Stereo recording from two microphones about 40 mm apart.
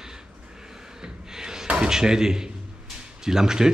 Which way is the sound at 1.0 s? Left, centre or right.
Centre.